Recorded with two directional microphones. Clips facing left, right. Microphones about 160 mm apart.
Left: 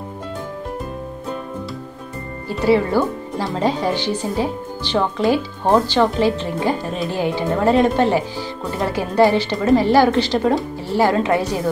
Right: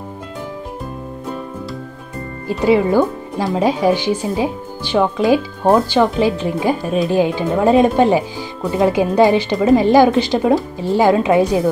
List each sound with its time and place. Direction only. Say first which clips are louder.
2.6 s speech: right 3 dB; 15° right (ahead or behind)